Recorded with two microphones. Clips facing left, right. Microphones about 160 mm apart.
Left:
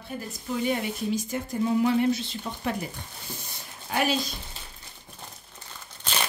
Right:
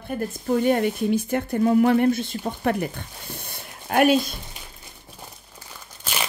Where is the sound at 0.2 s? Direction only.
55° right (ahead or behind).